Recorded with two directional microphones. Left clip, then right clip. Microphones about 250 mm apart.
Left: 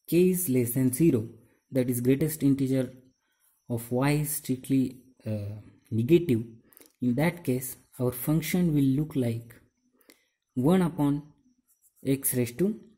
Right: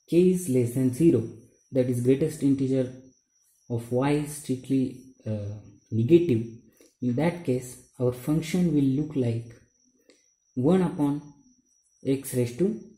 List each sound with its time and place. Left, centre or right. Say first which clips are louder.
0.0 s speech: right 2 dB; left
10.0 s a sound: left 1 dB; left
12.0 s speech: right 2 dB; left